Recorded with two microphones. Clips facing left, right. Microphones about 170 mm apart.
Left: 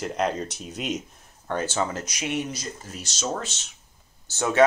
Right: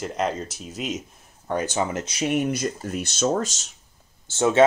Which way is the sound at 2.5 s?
55° right (ahead or behind).